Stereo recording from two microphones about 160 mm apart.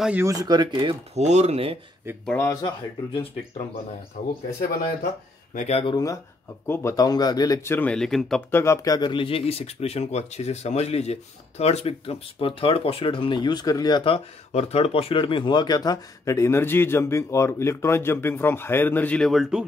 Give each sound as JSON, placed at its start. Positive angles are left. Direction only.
{"t": 0.2, "sound": "speech", "side_deg": -20}
{"t": 1.1, "sound": "speech", "side_deg": -45}
{"t": 2.2, "sound": "speech", "side_deg": 15}
{"t": 5.5, "sound": "speech", "side_deg": 45}
{"t": 6.7, "sound": "speech", "side_deg": 20}
{"t": 8.5, "sound": "speech", "side_deg": 15}